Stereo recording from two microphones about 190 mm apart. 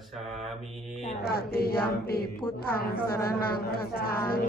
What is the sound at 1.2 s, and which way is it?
A woman's voice, 55° left (ahead or behind).